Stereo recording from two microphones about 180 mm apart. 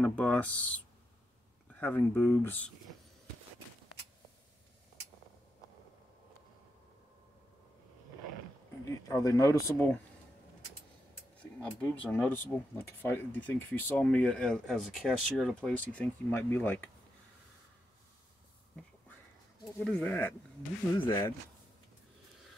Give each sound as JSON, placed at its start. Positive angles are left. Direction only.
{"t": 0.0, "sound": "speech", "side_deg": 10}
{"t": 1.8, "sound": "speech", "side_deg": 10}
{"t": 8.8, "sound": "speech", "side_deg": 20}
{"t": 11.6, "sound": "speech", "side_deg": 10}
{"t": 19.8, "sound": "speech", "side_deg": 10}